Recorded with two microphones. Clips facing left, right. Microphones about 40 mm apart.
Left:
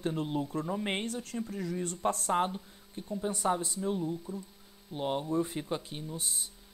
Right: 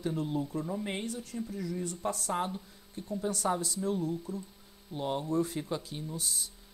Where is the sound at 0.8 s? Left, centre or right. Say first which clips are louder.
Left 2 dB; left.